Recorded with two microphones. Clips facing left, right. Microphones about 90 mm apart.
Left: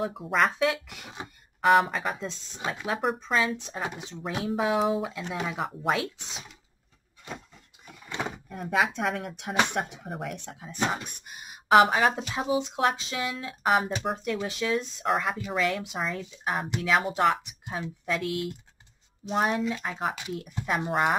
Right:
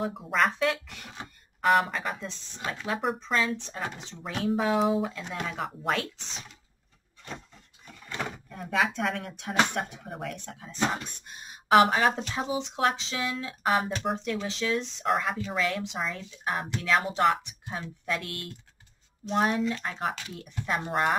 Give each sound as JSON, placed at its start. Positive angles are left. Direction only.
{"t": 0.0, "sound": "speech", "side_deg": 0}
{"t": 0.5, "sound": "speech", "side_deg": 15}
{"t": 1.6, "sound": "speech", "side_deg": 0}
{"t": 2.1, "sound": "speech", "side_deg": 20}
{"t": 7.2, "sound": "a sound", "side_deg": 10}
{"t": 9.6, "sound": "speech", "side_deg": 10}
{"t": 17.6, "sound": "speech", "side_deg": 15}
{"t": 18.0, "sound": "speech", "side_deg": 5}